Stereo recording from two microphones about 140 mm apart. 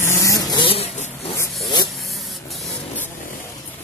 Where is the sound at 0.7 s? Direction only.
50° left (ahead or behind).